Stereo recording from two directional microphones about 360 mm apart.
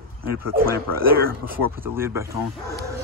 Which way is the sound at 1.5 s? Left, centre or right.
Centre.